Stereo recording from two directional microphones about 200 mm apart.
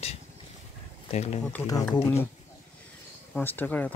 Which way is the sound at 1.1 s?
35° left (ahead or behind).